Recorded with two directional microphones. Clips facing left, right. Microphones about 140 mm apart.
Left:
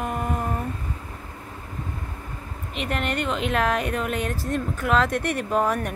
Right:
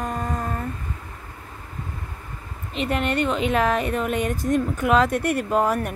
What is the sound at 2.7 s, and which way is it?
Speech, centre (ahead or behind).